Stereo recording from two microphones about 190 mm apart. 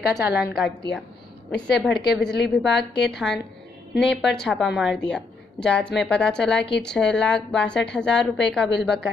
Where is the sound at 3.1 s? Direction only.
Centre (ahead or behind).